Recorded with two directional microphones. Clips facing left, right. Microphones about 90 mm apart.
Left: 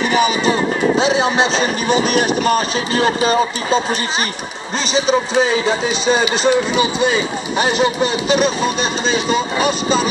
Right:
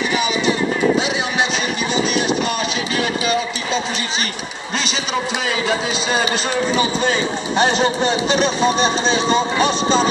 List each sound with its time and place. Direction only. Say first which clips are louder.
0.1 s speech: left 5 dB; 45° left (ahead or behind)
0.9 s a man's voice: left 5 dB; 30° left (ahead or behind)
1.9 s a man's voice: left 3 dB; 50° left (ahead or behind)
4.9 s a man's voice: left 11 dB; 30° left (ahead or behind)
7.8 s speech: left 1 dB; 35° right (ahead or behind)